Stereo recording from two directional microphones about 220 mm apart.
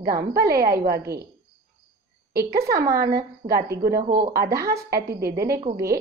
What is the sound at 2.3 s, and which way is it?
Speech, 45° right (ahead or behind).